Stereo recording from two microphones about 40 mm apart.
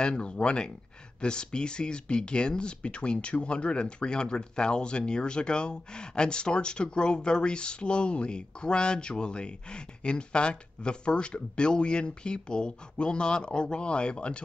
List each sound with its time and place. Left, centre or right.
0.0 s speech: left